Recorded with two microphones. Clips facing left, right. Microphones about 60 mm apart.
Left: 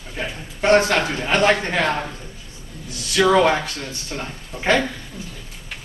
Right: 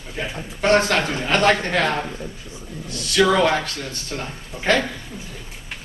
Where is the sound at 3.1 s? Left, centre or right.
Centre.